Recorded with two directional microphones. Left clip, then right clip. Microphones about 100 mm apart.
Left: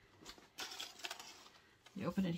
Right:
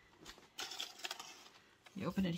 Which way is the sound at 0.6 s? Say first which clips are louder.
Right 2 dB; 5° right (ahead or behind).